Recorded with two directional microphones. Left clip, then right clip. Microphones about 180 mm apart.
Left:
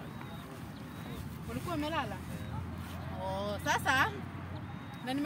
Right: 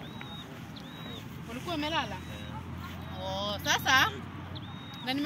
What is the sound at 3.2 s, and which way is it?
Speech, 20° left (ahead or behind).